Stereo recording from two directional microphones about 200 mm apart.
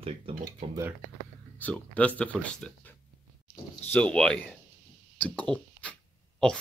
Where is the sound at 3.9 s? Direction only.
5° left (ahead or behind).